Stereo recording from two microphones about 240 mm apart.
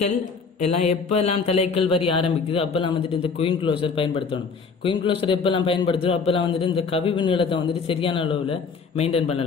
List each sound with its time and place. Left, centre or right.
0.6 s mantra: left
0.8 s a man's voice: left